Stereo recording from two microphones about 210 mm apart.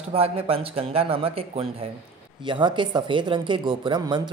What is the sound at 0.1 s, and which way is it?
A man's voice, 30° right (ahead or behind).